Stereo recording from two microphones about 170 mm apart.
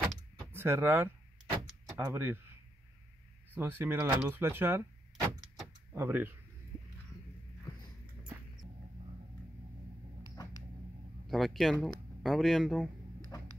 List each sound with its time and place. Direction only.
0.5 s speech: 15° right (ahead or behind)
3.5 s speech: 15° right (ahead or behind)
5.9 s speech: 10° right (ahead or behind)
10.3 s a sound: 20° left (ahead or behind)
11.2 s speech: centre (ahead or behind)
13.3 s music: 20° left (ahead or behind)